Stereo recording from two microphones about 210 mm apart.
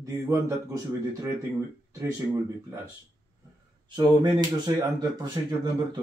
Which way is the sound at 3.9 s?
20° right (ahead or behind).